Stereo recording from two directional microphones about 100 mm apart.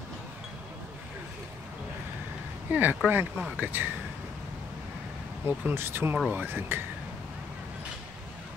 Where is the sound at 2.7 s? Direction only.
20° right (ahead or behind).